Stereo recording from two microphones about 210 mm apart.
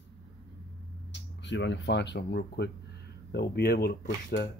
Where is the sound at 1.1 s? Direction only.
55° left (ahead or behind).